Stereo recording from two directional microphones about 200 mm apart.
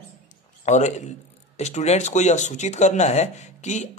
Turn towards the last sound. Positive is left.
turn(degrees=35)  # may be behind; listen again after turning